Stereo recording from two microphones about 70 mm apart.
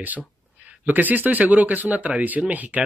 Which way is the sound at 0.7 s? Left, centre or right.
Right.